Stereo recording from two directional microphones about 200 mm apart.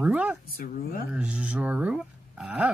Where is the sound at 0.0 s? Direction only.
5° right (ahead or behind).